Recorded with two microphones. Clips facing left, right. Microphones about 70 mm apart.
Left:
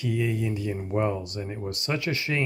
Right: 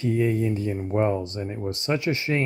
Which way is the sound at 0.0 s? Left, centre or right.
Right.